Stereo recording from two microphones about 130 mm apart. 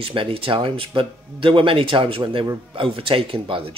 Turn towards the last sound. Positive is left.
turn(degrees=-45)  # may be behind; listen again after turning